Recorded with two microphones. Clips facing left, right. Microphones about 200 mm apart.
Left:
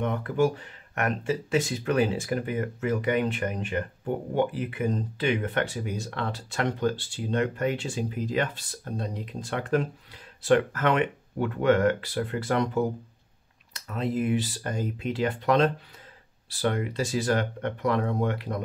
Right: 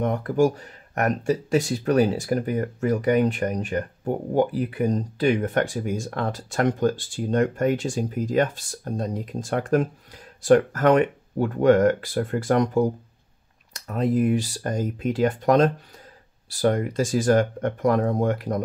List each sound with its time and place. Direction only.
0.0 s speech: 40° right (ahead or behind)